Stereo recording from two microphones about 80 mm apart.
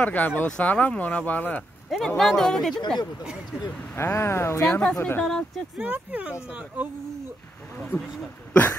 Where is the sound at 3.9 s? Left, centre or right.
Left.